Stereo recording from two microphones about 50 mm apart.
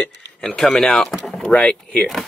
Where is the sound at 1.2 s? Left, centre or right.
Centre.